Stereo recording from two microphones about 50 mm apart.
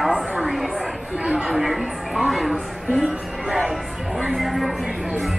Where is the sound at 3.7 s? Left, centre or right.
Centre.